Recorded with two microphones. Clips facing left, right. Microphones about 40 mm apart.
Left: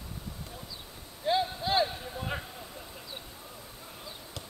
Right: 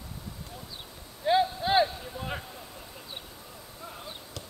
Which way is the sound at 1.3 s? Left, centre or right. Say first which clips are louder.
Right 4 dB; centre.